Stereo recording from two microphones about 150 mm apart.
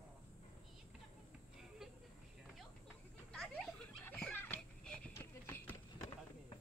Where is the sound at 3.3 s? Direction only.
5° left (ahead or behind).